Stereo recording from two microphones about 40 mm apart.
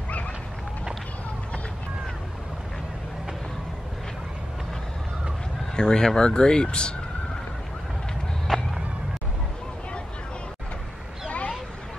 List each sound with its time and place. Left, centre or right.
5.8 s speech: centre
8.5 s whip: centre
11.2 s a sound: left